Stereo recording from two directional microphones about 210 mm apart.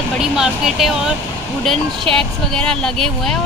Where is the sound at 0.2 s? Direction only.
Centre (ahead or behind).